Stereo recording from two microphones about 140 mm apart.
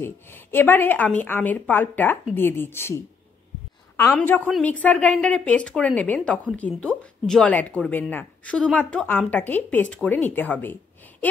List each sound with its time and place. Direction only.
0.0 s a woman's voice: 15° left (ahead or behind)